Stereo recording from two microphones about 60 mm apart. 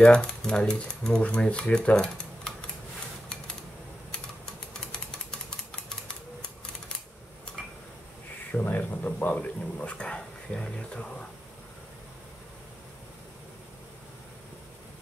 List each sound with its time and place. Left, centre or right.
0.0 s speech: centre
4.7 s typewriter: centre
7.6 s a sound: centre
8.5 s speech: left